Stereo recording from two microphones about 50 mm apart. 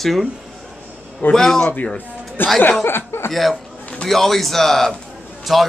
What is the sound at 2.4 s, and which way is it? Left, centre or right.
Speech, left.